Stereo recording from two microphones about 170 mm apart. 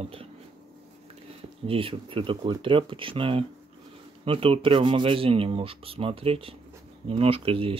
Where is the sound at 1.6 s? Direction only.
30° right (ahead or behind).